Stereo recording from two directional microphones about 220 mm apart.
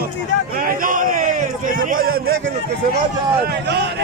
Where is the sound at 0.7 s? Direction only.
40° right (ahead or behind).